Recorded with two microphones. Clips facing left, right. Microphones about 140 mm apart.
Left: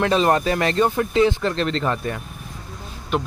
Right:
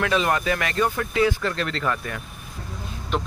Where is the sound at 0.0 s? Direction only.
35° left (ahead or behind).